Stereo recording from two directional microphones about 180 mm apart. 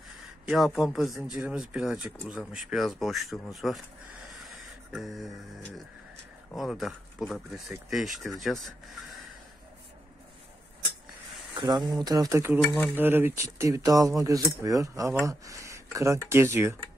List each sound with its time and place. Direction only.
0.5 s speech: centre (ahead or behind)
4.3 s a sound: centre (ahead or behind)
6.5 s speech: centre (ahead or behind)
11.5 s speech: 20° right (ahead or behind)